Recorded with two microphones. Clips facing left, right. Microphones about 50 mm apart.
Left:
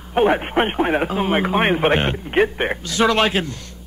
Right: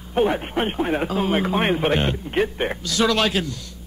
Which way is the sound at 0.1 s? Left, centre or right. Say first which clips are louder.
Left 4 dB; left.